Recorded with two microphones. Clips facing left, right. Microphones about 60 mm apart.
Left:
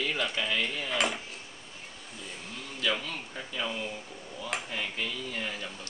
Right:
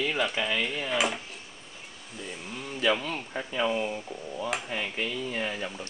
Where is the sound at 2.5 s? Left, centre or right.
Right.